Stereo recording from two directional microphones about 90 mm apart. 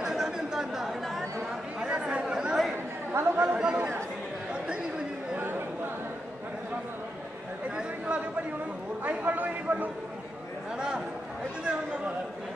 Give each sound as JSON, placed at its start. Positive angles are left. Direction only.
{"t": 0.0, "sound": "chatter", "side_deg": -5}
{"t": 1.8, "sound": "chatter", "side_deg": -10}
{"t": 3.1, "sound": "chatter", "side_deg": -25}
{"t": 3.4, "sound": "chatter", "side_deg": -10}
{"t": 9.0, "sound": "a sound", "side_deg": -15}